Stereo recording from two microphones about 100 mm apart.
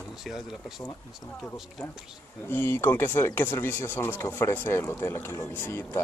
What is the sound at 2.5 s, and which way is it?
Speech, 20° left (ahead or behind).